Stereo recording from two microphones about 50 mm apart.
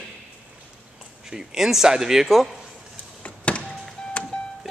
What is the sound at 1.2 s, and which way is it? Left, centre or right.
Speech, centre.